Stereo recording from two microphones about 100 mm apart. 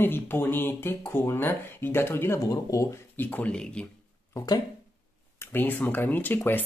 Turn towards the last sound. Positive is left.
turn(degrees=20)  # may be behind; listen again after turning